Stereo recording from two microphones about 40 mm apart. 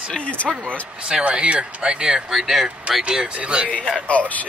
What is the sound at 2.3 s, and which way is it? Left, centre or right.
Speech, centre.